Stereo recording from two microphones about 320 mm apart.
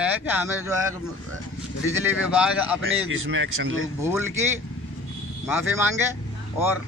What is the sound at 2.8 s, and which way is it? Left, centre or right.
A man's voice, right.